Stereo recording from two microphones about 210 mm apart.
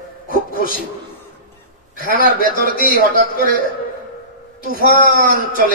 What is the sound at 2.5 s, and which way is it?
Speech, 45° left (ahead or behind).